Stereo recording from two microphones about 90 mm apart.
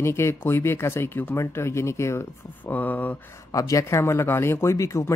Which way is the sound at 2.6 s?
20° left (ahead or behind).